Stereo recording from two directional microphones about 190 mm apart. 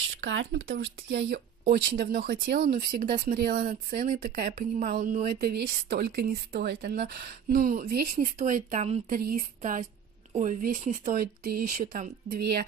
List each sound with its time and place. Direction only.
0.2 s a woman's voice: 75° right (ahead or behind); by 12.6 s 55° right (ahead or behind)